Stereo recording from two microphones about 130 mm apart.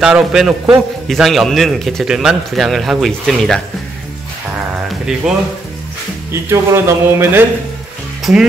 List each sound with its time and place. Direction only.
0.0 s a man's voice: 5° right (ahead or behind)
4.8 s speech: 5° right (ahead or behind)
6.5 s speech: 20° right (ahead or behind)
8.2 s speech: 5° right (ahead or behind)